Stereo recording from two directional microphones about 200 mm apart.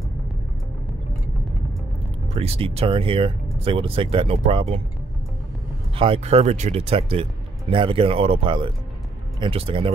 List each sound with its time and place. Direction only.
2.3 s speech: 30° right (ahead or behind)
5.9 s speech: 25° right (ahead or behind)